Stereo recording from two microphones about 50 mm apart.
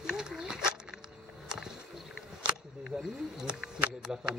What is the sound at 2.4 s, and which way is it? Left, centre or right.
Wild animals, centre.